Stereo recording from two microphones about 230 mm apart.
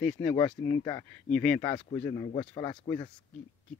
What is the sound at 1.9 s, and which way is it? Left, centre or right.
Speech, centre.